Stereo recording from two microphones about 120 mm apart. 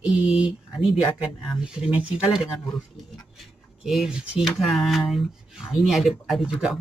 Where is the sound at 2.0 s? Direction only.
5° right (ahead or behind).